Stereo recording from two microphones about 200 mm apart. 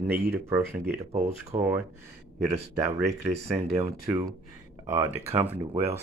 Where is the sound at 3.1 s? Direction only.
30° right (ahead or behind).